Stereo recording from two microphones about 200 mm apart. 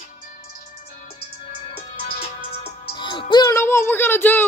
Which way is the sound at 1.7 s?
30° left (ahead or behind).